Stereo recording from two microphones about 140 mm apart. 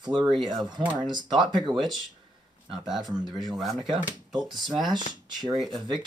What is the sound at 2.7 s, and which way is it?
Speech, centre (ahead or behind).